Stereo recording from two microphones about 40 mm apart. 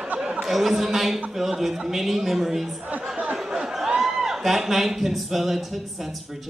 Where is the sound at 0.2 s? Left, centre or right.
Centre.